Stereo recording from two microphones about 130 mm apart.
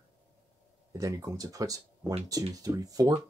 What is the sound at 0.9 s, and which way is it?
Speech, 25° right (ahead or behind).